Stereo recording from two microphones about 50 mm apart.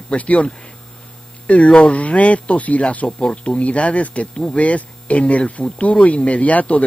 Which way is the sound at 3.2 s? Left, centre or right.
Centre.